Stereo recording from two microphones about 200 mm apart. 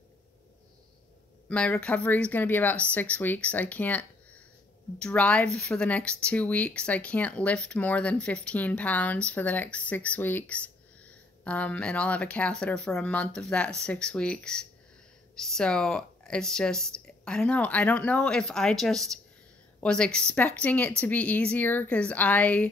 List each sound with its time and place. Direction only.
1.5 s speech: 5° left (ahead or behind)